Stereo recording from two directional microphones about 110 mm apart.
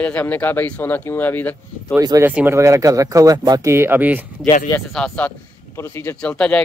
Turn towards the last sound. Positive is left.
turn(degrees=10)  # may be behind; listen again after turning